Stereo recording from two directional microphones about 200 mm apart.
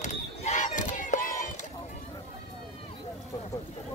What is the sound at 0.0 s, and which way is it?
Crowd, 35° left (ahead or behind).